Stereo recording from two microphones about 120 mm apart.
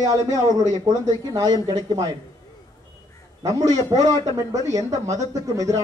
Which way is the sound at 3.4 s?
30° right (ahead or behind).